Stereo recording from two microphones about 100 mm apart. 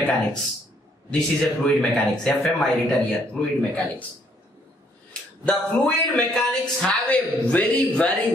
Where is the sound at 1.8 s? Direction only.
5° left (ahead or behind).